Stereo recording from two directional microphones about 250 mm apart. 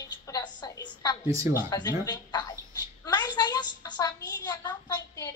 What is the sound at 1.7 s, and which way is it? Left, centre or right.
Child singing, centre.